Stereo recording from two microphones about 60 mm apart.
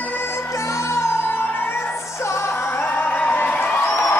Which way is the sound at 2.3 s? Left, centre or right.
Left.